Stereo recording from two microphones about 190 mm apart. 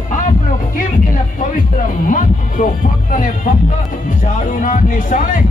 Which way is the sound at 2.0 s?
45° left (ahead or behind).